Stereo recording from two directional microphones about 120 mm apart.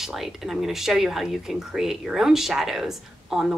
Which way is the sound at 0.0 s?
Centre (ahead or behind).